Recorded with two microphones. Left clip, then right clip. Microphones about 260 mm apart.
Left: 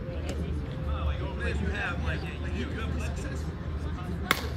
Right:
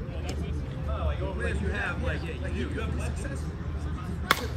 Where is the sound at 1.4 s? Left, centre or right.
Centre.